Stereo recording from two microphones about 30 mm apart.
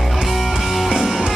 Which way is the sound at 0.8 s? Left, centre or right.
Centre.